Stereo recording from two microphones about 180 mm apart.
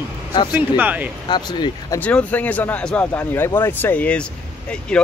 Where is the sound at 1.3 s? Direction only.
25° left (ahead or behind).